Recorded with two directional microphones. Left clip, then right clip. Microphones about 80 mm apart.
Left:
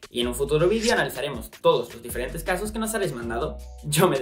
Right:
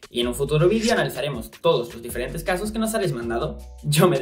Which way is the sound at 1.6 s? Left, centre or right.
Left.